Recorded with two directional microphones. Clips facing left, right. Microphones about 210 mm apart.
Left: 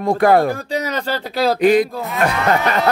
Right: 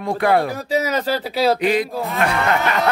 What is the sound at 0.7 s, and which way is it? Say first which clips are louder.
Speech: right 2 dB; 5° right (ahead or behind).